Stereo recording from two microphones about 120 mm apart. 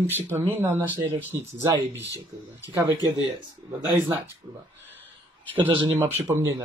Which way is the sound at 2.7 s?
20° right (ahead or behind).